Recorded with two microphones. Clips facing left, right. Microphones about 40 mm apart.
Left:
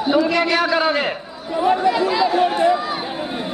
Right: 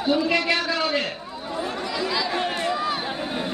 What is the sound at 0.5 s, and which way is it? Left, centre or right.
A man's voice, left.